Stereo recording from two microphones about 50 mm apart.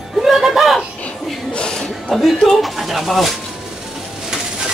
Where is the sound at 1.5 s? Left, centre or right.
Centre.